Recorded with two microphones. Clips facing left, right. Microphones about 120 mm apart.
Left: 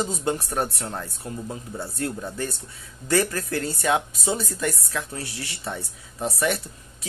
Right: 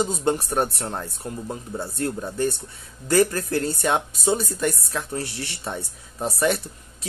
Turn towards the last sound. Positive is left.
turn(degrees=-35)  # may be behind; listen again after turning